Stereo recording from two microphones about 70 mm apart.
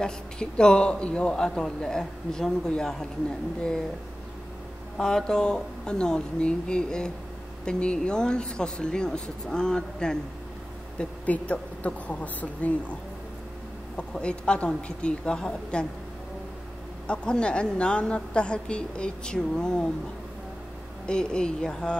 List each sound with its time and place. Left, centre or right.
0.0 s a man's voice: centre
4.9 s a man's voice: centre
13.9 s a man's voice: centre
17.1 s a man's voice: centre
21.1 s a man's voice: centre